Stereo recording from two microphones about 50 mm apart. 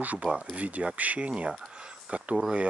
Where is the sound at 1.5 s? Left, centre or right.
Centre.